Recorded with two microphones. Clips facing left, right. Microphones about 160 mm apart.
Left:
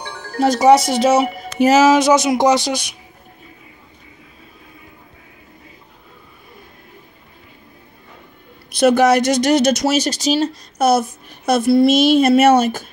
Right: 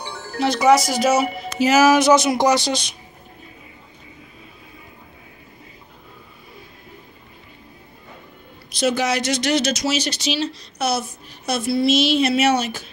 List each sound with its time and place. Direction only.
0.0 s music: 15° left (ahead or behind)
0.4 s speech: 40° left (ahead or behind)
1.7 s a sound: 20° left (ahead or behind)
8.7 s speech: 55° left (ahead or behind)